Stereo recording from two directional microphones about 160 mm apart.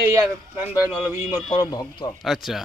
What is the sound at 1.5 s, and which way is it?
Speech, 25° left (ahead or behind).